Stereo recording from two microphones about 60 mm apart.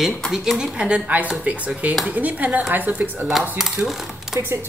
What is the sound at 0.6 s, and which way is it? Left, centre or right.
Speech, centre.